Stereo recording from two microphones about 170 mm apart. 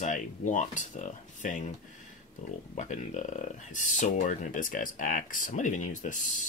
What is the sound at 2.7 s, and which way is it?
Speech, 45° left (ahead or behind).